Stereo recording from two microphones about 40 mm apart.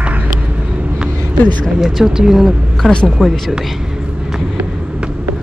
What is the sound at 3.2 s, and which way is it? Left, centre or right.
Speech, right.